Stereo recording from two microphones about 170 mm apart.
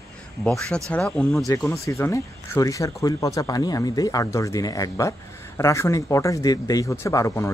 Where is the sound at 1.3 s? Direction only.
15° left (ahead or behind).